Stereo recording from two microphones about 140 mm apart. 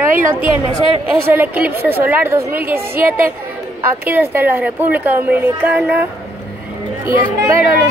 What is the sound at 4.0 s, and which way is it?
A woman's voice, 15° right (ahead or behind).